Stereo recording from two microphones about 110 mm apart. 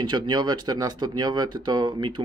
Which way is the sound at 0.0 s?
45° right (ahead or behind).